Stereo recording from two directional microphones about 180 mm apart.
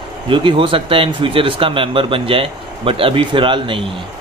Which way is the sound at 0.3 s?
30° right (ahead or behind).